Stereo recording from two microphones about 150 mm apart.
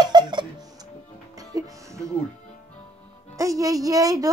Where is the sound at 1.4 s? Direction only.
20° right (ahead or behind).